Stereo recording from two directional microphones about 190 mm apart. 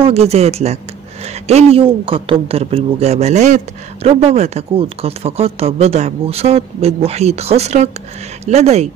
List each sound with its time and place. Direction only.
0.0 s speech: 35° right (ahead or behind)